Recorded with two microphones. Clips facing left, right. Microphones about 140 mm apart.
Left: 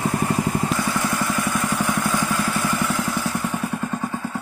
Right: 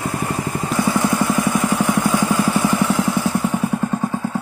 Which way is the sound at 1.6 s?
5° right (ahead or behind).